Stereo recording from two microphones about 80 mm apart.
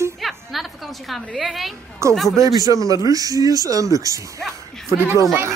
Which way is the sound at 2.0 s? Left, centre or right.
Right.